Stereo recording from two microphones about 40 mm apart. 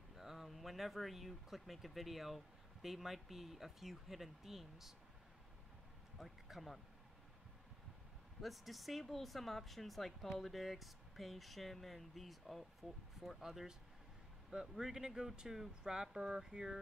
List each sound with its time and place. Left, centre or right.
0.1 s speech: centre
6.1 s speech: centre
8.4 s speech: centre